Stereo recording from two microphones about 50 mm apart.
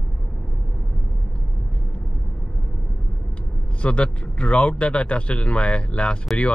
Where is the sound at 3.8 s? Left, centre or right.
Left.